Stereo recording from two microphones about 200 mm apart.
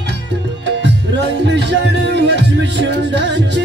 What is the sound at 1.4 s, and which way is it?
Music, 60° right (ahead or behind).